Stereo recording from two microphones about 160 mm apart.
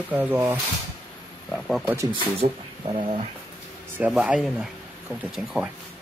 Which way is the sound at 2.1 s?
30° right (ahead or behind).